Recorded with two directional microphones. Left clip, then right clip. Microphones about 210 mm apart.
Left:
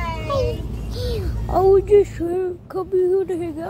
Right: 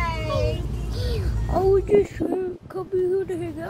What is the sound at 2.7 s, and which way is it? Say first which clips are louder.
Speech: left 5 dB; 20° left (ahead or behind).